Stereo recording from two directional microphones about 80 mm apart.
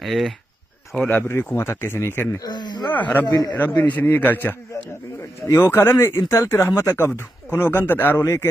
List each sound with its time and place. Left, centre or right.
0.0 s speech: centre
1.0 s speech: left
2.4 s speech: left
2.9 s speech: left
3.3 s speech: left
3.5 s speech: left